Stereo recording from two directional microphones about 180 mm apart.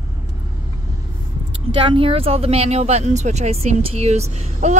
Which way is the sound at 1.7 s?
30° right (ahead or behind).